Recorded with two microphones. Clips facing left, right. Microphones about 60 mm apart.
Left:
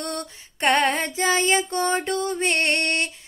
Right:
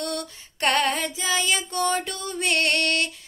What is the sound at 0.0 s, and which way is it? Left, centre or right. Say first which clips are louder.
Female singing: even; left.